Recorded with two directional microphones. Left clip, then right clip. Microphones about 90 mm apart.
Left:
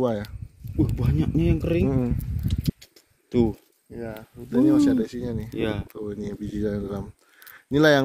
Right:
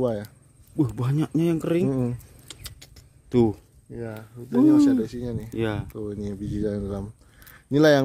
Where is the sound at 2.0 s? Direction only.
55° right (ahead or behind).